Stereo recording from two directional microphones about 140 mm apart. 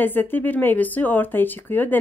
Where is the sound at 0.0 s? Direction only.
15° left (ahead or behind).